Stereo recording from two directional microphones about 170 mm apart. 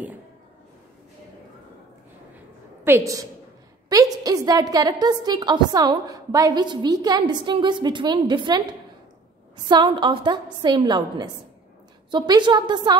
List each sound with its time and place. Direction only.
2.8 s a woman's voice: 15° right (ahead or behind)
9.7 s a woman's voice: 25° right (ahead or behind)